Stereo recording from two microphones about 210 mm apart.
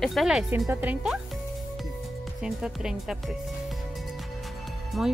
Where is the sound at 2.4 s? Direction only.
5° right (ahead or behind).